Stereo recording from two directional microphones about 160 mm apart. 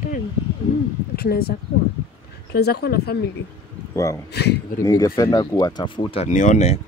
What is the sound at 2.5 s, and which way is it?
Speech, 90° left.